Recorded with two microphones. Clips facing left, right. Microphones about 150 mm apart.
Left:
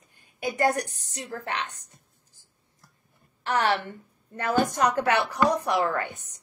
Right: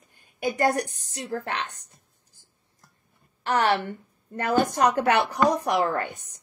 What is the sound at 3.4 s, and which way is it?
Speech, 30° right (ahead or behind).